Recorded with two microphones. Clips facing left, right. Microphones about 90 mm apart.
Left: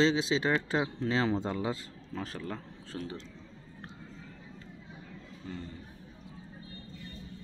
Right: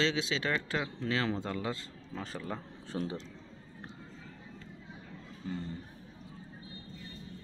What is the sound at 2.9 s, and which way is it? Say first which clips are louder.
Speech: right 3 dB; 20° right (ahead or behind).